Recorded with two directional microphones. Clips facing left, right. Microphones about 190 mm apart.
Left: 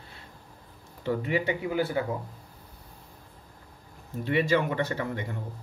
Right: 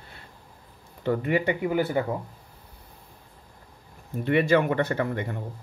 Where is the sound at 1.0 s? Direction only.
55° right (ahead or behind).